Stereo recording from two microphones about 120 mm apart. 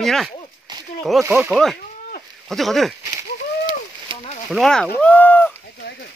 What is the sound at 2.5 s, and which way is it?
Speech, centre (ahead or behind).